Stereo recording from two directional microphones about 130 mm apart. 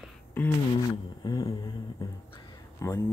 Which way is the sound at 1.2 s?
35° left (ahead or behind).